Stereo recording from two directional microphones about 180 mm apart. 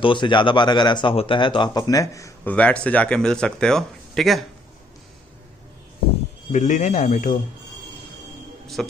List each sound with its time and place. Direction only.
0.0 s a man's voice: 25° left (ahead or behind); by 4.5 s centre (ahead or behind)
6.5 s speech: 45° left (ahead or behind)
8.8 s a man's voice: 5° left (ahead or behind)